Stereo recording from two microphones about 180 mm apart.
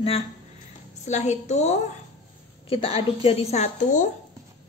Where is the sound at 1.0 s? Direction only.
40° left (ahead or behind).